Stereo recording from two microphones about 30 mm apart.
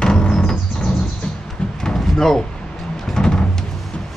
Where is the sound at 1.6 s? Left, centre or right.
Left.